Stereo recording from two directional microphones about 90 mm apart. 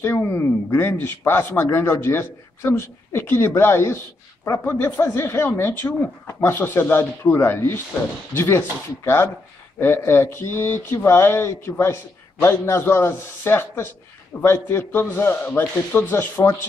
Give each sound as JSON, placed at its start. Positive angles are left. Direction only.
{"t": 0.3, "sound": "a man's voice", "side_deg": 25}